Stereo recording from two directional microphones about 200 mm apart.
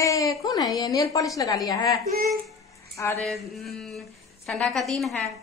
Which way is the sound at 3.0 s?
5° left (ahead or behind).